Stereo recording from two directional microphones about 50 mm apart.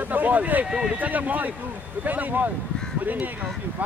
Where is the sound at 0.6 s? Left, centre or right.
Centre.